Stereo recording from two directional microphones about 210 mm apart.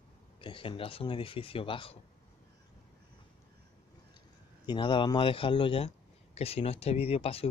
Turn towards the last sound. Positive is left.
turn(degrees=30)  # may be behind; listen again after turning